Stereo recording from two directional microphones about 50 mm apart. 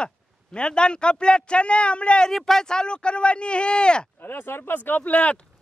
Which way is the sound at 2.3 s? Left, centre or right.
Centre.